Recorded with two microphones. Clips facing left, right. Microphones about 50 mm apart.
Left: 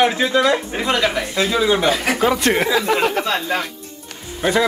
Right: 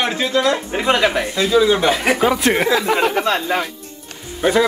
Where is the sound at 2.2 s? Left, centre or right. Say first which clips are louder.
Right 1 dB; centre.